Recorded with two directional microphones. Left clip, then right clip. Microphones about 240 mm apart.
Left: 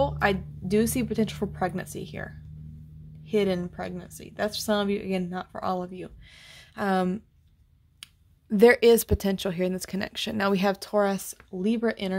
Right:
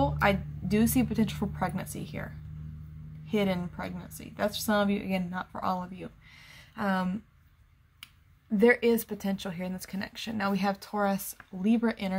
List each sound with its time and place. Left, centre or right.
0.0 s a woman's voice: left
3.3 s a woman's voice: left